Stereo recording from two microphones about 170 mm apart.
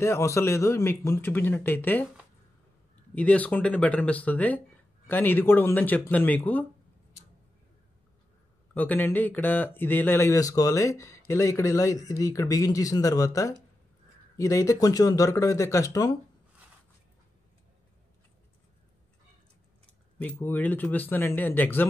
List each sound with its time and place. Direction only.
0.0 s speech: 15° left (ahead or behind)
3.2 s speech: 10° left (ahead or behind)
8.7 s speech: 10° left (ahead or behind)
20.2 s speech: 10° left (ahead or behind)